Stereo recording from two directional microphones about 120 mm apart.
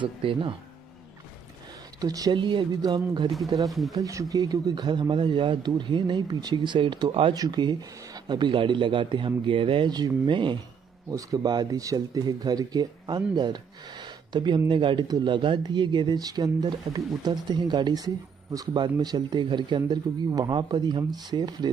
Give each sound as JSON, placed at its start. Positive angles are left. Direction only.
{"t": 0.0, "sound": "speech", "side_deg": -45}
{"t": 2.0, "sound": "speech", "side_deg": -30}
{"t": 7.3, "sound": "speech", "side_deg": -35}
{"t": 11.1, "sound": "speech", "side_deg": -30}